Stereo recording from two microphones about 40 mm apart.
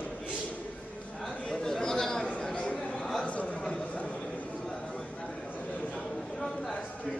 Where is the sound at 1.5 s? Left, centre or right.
Centre.